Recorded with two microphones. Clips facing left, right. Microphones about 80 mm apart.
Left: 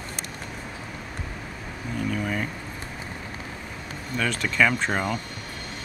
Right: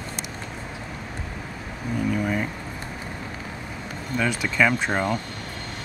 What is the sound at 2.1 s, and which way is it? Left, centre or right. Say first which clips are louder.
Vehicle: right 3 dB; centre.